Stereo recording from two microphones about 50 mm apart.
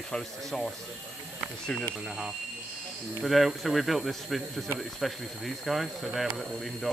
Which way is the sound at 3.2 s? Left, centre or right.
Centre.